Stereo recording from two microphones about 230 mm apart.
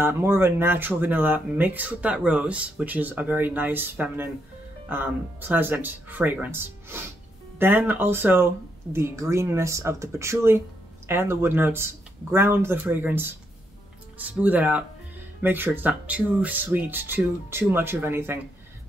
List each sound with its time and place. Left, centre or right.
0.0 s speech: centre